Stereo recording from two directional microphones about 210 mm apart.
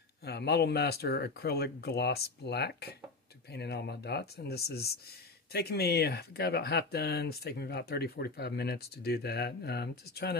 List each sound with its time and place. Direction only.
0.2 s speech: 50° left (ahead or behind)